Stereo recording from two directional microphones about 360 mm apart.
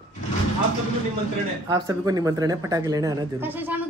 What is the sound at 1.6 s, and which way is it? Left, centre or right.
Speech, centre.